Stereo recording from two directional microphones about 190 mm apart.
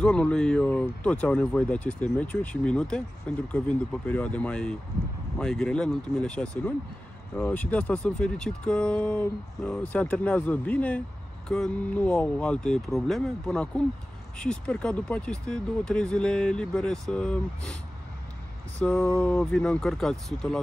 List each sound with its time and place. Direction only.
0.0 s speech: 5° left (ahead or behind)
18.8 s speech: 5° left (ahead or behind)